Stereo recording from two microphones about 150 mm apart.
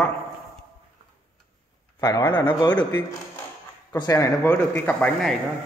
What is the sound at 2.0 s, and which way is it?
Speech, 25° left (ahead or behind).